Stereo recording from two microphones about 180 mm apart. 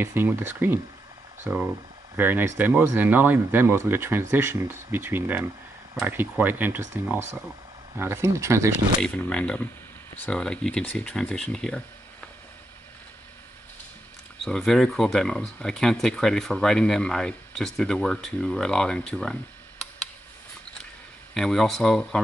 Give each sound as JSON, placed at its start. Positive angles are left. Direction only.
{"t": 0.0, "sound": "speech", "side_deg": -10}
{"t": 9.0, "sound": "speech", "side_deg": 5}
{"t": 14.4, "sound": "speech", "side_deg": 5}
{"t": 21.4, "sound": "speech", "side_deg": 0}